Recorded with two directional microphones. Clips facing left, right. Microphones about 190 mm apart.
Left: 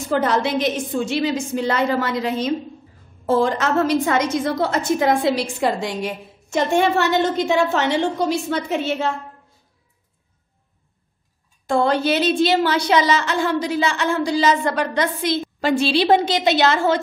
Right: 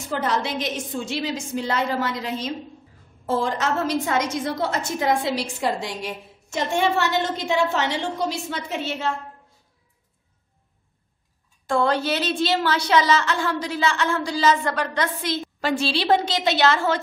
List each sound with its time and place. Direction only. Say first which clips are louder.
0.1 s a woman's voice: left 6 dB; 60° left (ahead or behind)
11.6 s a woman's voice: left 3 dB; 20° left (ahead or behind)